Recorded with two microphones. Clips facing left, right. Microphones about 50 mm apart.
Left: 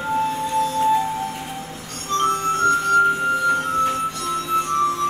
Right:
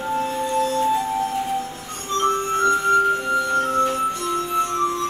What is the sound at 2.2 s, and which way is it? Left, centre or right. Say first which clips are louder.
Music: even; right.